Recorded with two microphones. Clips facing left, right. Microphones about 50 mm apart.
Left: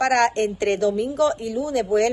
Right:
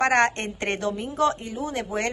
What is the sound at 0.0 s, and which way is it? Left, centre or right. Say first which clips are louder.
A woman's voice: left 2 dB; right.